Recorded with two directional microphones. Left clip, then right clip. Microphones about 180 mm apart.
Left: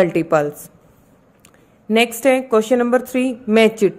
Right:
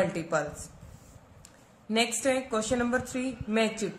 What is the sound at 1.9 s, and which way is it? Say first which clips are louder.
A woman's voice: left 12 dB; 50° left (ahead or behind).